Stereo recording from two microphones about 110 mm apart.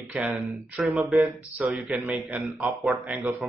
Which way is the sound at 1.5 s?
15° right (ahead or behind).